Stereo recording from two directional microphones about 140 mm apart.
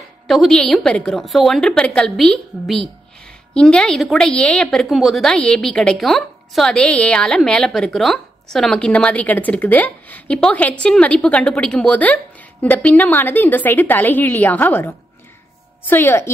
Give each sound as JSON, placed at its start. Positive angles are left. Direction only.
{"t": 0.3, "sound": "a woman's voice", "side_deg": 0}